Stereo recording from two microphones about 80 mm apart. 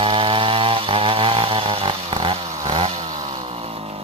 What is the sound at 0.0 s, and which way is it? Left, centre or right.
Chainsaw, right.